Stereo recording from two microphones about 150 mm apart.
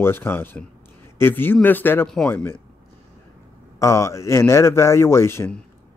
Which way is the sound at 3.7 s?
20° left (ahead or behind).